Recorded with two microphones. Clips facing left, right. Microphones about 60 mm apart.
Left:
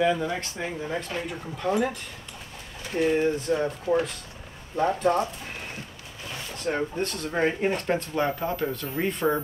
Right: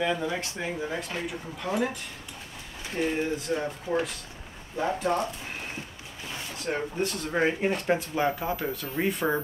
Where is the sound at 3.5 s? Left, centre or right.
Centre.